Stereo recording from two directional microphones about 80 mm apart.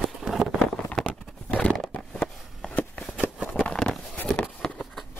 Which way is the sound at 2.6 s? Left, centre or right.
Left.